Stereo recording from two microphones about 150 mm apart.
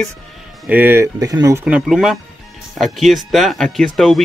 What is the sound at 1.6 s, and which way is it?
Speech, 5° right (ahead or behind).